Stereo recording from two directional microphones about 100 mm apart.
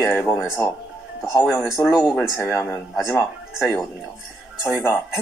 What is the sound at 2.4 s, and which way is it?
Speech, 25° left (ahead or behind).